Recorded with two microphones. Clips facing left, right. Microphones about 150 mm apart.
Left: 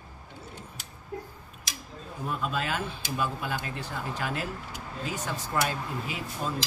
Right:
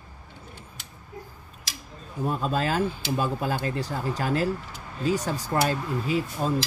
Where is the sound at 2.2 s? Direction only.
30° right (ahead or behind).